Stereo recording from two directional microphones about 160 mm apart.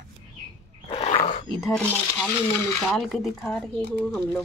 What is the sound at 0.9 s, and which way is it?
Wild animals, 35° left (ahead or behind).